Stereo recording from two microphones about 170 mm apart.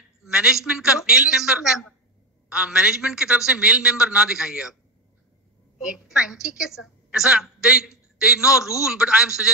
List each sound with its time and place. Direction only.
0.3 s a man's voice: 5° right (ahead or behind)
5.8 s a woman's voice: 5° right (ahead or behind)